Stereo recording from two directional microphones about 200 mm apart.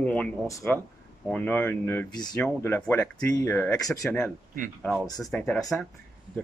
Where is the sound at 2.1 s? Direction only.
20° left (ahead or behind).